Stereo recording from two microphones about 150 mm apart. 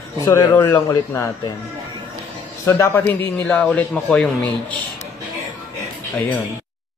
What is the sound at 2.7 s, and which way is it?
A man's voice, 20° left (ahead or behind).